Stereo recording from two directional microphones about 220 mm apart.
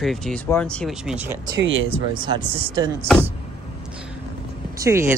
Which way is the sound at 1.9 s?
20° right (ahead or behind).